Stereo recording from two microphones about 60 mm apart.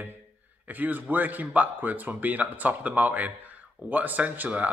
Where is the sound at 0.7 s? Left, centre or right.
Right.